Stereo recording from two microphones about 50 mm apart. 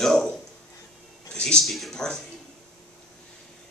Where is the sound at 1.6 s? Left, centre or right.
Centre.